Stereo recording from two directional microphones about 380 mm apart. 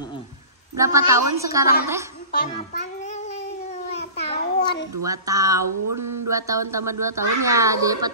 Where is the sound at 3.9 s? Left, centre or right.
Centre.